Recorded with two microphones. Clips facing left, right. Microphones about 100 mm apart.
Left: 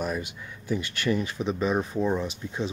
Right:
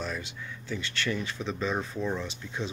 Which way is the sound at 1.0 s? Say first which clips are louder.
Left 6 dB; 40° left (ahead or behind).